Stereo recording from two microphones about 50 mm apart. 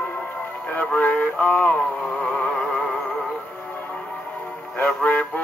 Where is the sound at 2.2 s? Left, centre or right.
Centre.